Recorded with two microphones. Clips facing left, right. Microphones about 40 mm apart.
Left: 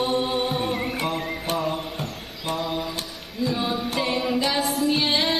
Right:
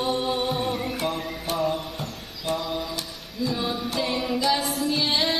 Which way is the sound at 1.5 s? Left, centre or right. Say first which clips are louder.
Right 2 dB; centre.